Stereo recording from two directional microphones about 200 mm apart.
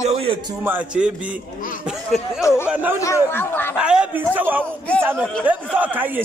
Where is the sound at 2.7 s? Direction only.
10° right (ahead or behind).